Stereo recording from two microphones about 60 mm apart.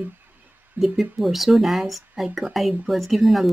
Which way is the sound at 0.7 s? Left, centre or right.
Centre.